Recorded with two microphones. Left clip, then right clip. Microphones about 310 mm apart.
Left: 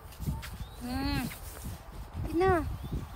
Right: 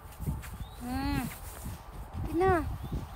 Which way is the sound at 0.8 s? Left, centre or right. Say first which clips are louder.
Even; centre.